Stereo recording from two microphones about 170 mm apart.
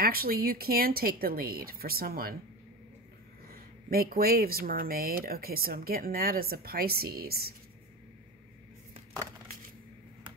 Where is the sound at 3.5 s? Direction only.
60° right (ahead or behind).